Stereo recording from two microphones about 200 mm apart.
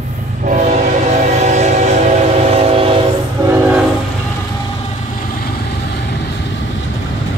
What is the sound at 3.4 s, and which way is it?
Train, 15° right (ahead or behind).